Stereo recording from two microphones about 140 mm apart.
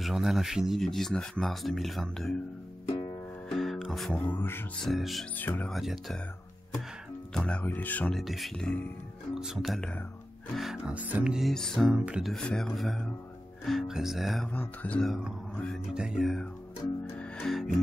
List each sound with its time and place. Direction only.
0.0 s speech: 5° right (ahead or behind)
3.4 s music: 5° left (ahead or behind)
4.3 s speech: 15° left (ahead or behind)
4.8 s speech: centre (ahead or behind)
5.4 s speech: 15° left (ahead or behind)
5.7 s speech: centre (ahead or behind)
7.3 s speech: 10° left (ahead or behind)
8.2 s speech: centre (ahead or behind)
14.5 s speech: 10° left (ahead or behind)
15.5 s music: 10° left (ahead or behind)
15.9 s speech: 5° right (ahead or behind)
17.2 s music: 5° left (ahead or behind)